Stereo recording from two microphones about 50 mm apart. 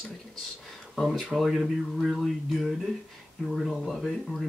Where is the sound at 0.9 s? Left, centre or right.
Centre.